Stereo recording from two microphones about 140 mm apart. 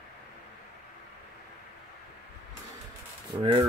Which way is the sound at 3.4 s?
45° right (ahead or behind).